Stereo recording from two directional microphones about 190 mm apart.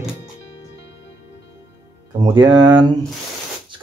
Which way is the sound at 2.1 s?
25° right (ahead or behind).